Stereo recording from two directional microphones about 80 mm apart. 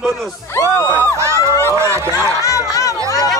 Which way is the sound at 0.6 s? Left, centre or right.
Right.